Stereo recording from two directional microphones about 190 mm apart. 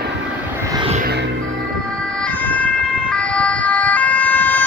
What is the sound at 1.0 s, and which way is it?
Music, 60° right (ahead or behind).